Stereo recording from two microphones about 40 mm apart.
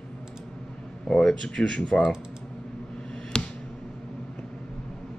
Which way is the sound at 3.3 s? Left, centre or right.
Left.